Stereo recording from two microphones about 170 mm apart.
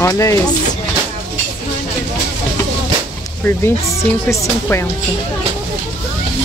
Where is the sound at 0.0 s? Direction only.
20° left (ahead or behind).